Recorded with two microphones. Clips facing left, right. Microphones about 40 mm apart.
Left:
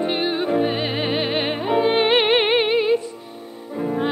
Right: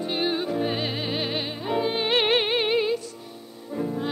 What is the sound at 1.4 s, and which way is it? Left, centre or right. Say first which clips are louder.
Music: left 8 dB; left.